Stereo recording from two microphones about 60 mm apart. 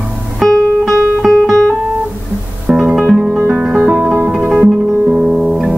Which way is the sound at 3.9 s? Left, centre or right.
Right.